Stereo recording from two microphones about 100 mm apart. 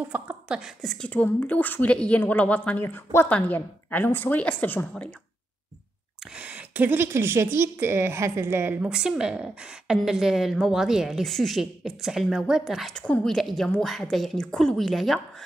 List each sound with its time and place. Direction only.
0.0 s a sound: 15° right (ahead or behind)
0.8 s a woman's voice: 15° left (ahead or behind)
6.3 s a woman's voice: 15° right (ahead or behind)
12.9 s a woman's voice: 10° left (ahead or behind)